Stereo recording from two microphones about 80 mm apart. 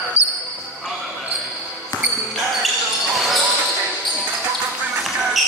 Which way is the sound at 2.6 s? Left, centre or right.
Centre.